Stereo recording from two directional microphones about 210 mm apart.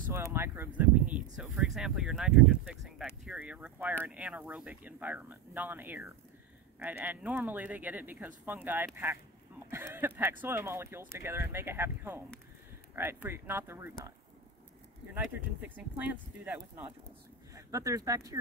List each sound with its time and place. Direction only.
0.3 s speech: 10° right (ahead or behind)
15.1 s speech: 10° right (ahead or behind)